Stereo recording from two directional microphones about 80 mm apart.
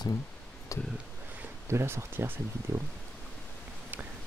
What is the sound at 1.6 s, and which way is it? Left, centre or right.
Speech, right.